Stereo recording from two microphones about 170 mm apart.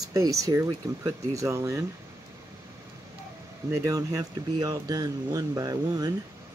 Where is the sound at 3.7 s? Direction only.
20° right (ahead or behind).